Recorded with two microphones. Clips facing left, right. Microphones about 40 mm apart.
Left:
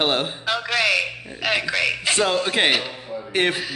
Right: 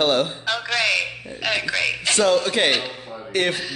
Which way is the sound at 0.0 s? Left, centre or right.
Left.